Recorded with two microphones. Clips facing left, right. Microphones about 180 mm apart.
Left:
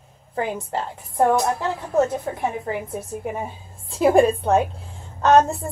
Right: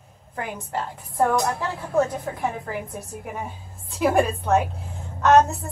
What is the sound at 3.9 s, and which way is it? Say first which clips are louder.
A woman's voice: left 5 dB; 30° left (ahead or behind).